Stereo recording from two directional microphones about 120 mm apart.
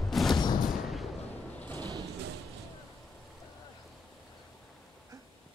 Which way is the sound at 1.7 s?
35° right (ahead or behind).